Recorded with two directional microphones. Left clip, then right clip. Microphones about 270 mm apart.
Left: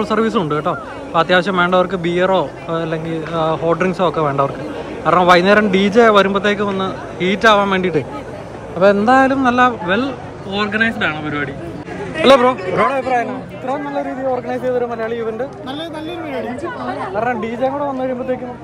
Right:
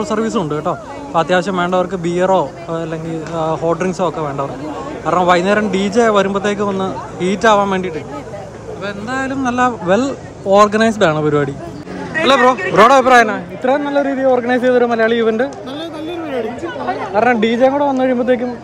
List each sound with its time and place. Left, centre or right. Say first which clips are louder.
0.0 s a man's voice: left 1 dB; centre
8.8 s a man's voice: left 11 dB; centre; by 11.5 s right
12.2 s a man's voice: even; centre
13.2 s a man's voice: right 8 dB; right
17.1 s a man's voice: right 8 dB; right